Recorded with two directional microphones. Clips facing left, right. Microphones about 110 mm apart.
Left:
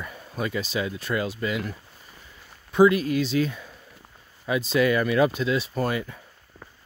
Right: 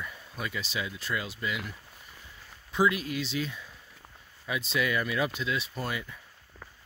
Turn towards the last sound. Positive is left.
turn(degrees=50)  # may be behind; listen again after turning